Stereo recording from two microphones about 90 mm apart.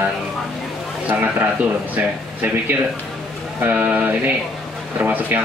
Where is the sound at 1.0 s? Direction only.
20° right (ahead or behind).